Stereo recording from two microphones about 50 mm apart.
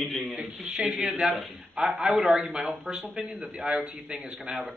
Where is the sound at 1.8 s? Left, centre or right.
Right.